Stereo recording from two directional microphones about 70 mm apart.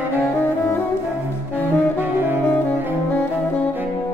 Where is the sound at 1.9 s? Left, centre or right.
Right.